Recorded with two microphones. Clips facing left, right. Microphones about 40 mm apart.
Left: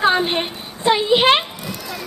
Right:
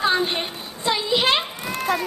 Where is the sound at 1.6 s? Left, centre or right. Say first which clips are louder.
Right 6 dB; right.